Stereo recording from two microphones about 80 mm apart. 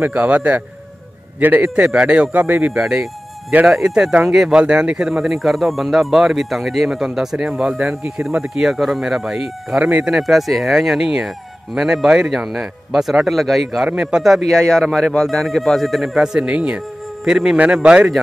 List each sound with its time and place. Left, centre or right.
0.0 s a man's voice: right
1.8 s speech: centre
2.3 s a man's voice: right
2.7 s speech: centre
9.8 s speech: centre
10.0 s speech: centre